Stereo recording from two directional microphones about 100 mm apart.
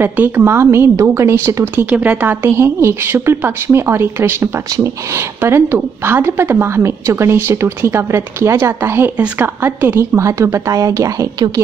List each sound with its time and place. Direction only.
0.0 s a woman's voice: 20° right (ahead or behind)
1.9 s a woman's voice: 15° right (ahead or behind)
10.1 s speech: 30° right (ahead or behind)
11.3 s a woman's voice: 45° right (ahead or behind)